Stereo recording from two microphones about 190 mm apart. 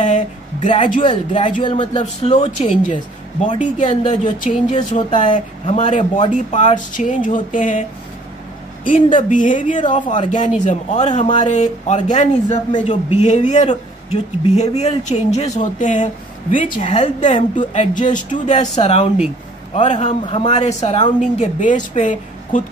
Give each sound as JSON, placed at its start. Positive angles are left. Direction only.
{"t": 0.0, "sound": "a sound", "side_deg": 40}
{"t": 0.7, "sound": "a woman's voice", "side_deg": 25}
{"t": 9.3, "sound": "a woman's voice", "side_deg": 40}
{"t": 21.2, "sound": "a woman's voice", "side_deg": 40}